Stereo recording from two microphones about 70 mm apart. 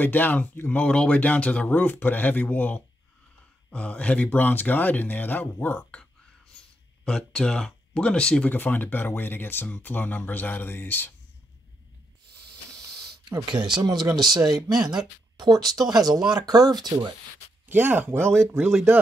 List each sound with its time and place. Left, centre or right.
0.0 s speech: left
7.1 s speech: centre
8.5 s speech: left
12.7 s a sound: right
14.5 s speech: centre
15.3 s speech: right
17.6 s speech: right